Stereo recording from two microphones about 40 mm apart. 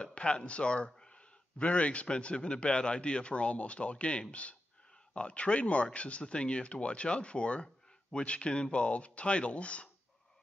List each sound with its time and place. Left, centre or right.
0.0 s speech: left